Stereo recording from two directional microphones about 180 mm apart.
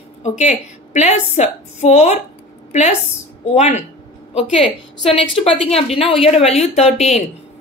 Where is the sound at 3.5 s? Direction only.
35° left (ahead or behind).